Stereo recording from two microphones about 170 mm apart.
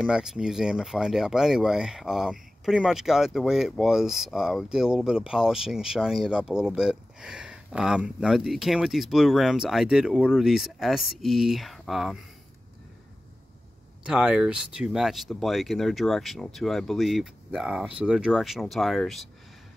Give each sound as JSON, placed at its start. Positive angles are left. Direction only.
{"t": 0.0, "sound": "speech", "side_deg": -5}
{"t": 14.0, "sound": "speech", "side_deg": -5}